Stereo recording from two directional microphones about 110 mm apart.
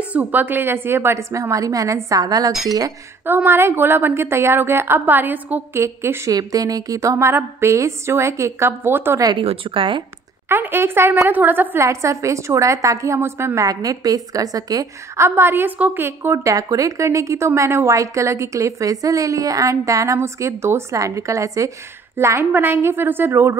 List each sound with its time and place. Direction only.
0.1 s a woman's voice: 15° right (ahead or behind); by 2.5 s 35° right (ahead or behind)
3.3 s speech: 20° right (ahead or behind)
9.4 s speech: 55° right (ahead or behind)
10.5 s speech: 20° right (ahead or behind)